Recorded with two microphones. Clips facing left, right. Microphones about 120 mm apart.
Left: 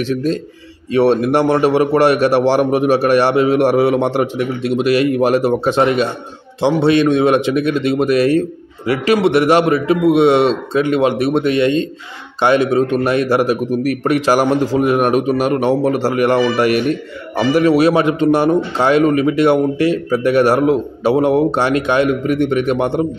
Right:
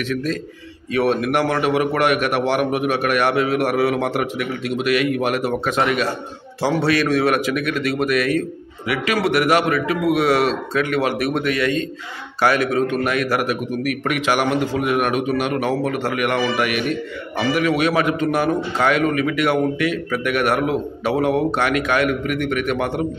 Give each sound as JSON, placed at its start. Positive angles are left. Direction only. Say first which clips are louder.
{"t": 0.0, "sound": "a man's voice", "louder": "left 5 dB", "side_deg": 30}